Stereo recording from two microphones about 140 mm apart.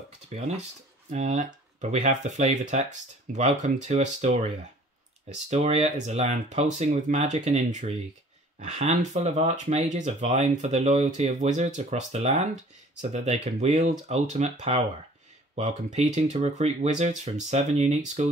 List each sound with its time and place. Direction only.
0.3 s speech: 50° right (ahead or behind)